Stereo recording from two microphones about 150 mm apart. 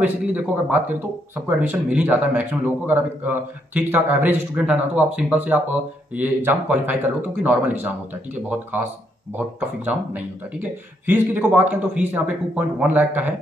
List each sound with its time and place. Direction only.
0.0 s speech: 10° right (ahead or behind)